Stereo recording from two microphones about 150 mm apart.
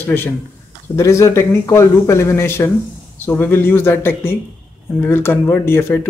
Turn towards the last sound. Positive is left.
turn(degrees=15)  # may be behind; listen again after turning